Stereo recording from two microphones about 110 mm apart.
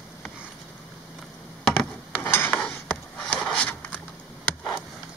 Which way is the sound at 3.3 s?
5° left (ahead or behind).